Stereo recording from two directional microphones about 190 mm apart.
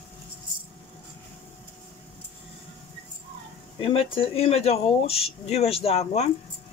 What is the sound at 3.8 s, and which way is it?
Speech, 30° left (ahead or behind).